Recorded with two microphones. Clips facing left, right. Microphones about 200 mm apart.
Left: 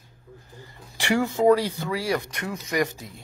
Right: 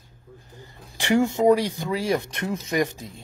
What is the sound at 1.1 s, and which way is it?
Speech, 15° right (ahead or behind).